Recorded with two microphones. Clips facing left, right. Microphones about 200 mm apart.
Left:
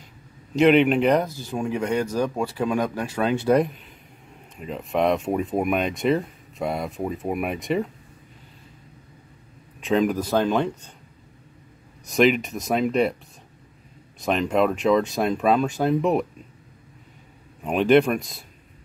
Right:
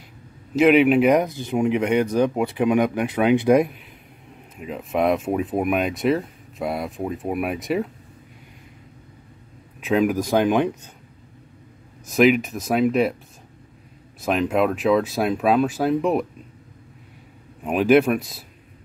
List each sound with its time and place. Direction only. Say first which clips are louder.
0.6 s speech: right 2 dB; 5° right (ahead or behind)
9.8 s speech: right 1 dB; 5° right (ahead or behind)
12.1 s speech: right 2 dB; centre (ahead or behind)
14.2 s speech: right 1 dB; 5° right (ahead or behind)
17.6 s speech: right 1 dB; 5° right (ahead or behind)